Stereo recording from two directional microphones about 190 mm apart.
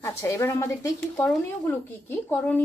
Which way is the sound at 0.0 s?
15° left (ahead or behind).